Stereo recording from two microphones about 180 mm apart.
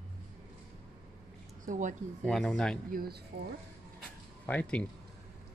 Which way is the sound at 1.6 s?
45° right (ahead or behind).